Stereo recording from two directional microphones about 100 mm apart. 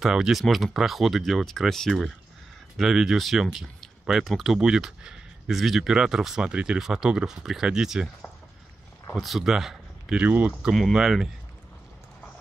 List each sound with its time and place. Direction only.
0.0 s speech: 5° right (ahead or behind)
9.1 s speech: centre (ahead or behind)
10.2 s speech: 15° right (ahead or behind)
10.7 s speech: centre (ahead or behind)